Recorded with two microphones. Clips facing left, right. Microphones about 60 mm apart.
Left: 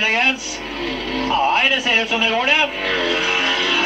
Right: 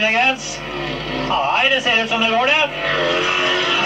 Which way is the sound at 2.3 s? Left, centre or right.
Right.